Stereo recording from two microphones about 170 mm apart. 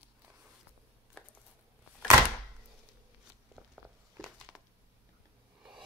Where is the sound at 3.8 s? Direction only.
Centre (ahead or behind).